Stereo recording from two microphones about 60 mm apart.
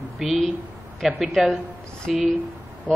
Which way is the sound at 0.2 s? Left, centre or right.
Centre.